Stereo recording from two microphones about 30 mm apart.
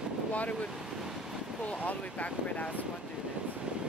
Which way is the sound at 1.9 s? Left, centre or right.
Left.